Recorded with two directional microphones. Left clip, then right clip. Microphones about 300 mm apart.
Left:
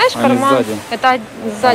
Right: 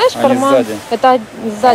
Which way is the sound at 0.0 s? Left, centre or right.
Centre.